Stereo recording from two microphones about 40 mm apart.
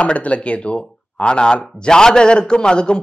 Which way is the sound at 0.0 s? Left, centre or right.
Left.